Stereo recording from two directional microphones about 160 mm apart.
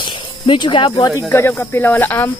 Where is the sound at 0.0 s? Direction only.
30° left (ahead or behind).